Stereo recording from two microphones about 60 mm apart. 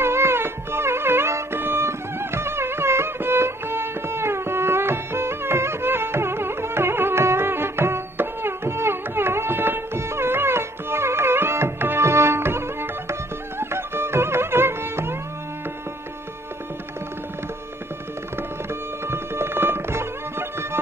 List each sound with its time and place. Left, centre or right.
0.0 s music: right
18.7 s music: right